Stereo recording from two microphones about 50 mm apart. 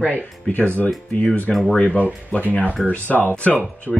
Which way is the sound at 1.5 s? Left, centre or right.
Centre.